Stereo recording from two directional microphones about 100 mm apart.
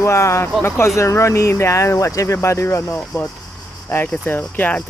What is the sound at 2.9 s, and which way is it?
Speech, 15° left (ahead or behind).